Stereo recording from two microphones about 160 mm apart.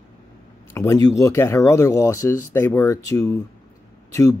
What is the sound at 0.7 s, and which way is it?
Speech, 20° left (ahead or behind).